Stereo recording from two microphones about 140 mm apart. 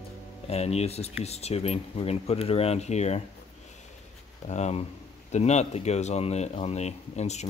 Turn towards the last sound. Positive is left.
turn(degrees=50)  # may be behind; listen again after turning